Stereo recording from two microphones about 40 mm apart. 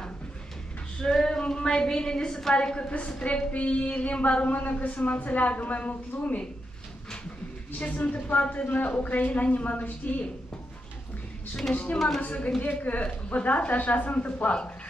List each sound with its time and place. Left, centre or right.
0.9 s a sound: centre
1.4 s a woman's voice: left
4.5 s a man's voice: left
7.9 s speech: left
12.2 s speech: left